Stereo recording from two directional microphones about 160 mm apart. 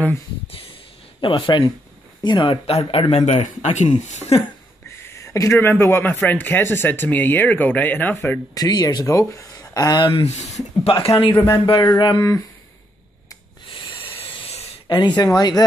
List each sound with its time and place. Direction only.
0.5 s a sound: 35° left (ahead or behind)
1.2 s speech: 30° left (ahead or behind)
4.8 s speech: 15° left (ahead or behind)
8.5 s speech: 25° left (ahead or behind)
13.8 s a sound: 35° left (ahead or behind)
15.0 s speech: 25° left (ahead or behind)